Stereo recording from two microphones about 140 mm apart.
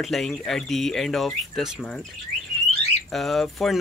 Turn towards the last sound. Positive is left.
turn(degrees=0)  # may be behind; listen again after turning